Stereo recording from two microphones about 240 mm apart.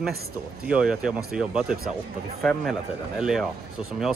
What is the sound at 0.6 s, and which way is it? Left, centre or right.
Speech, centre.